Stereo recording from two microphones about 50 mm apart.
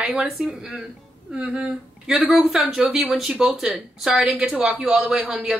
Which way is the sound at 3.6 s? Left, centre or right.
Centre.